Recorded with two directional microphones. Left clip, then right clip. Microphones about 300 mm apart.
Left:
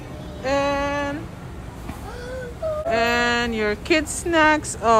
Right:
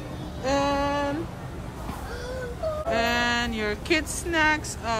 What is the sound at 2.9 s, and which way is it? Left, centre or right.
Speech, centre.